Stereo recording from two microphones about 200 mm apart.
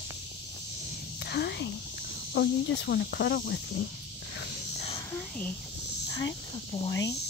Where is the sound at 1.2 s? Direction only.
55° left (ahead or behind).